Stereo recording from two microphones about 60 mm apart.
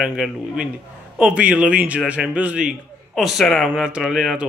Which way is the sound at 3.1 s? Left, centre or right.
Centre.